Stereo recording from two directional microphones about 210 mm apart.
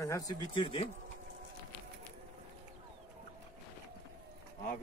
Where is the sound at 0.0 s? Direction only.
15° left (ahead or behind).